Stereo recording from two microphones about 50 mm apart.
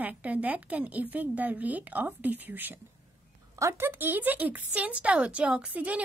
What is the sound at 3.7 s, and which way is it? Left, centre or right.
A woman's voice, right.